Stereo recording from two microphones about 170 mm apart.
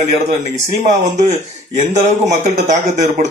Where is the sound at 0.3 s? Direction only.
45° right (ahead or behind).